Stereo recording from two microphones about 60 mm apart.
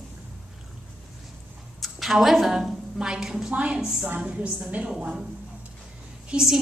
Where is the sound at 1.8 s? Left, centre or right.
Centre.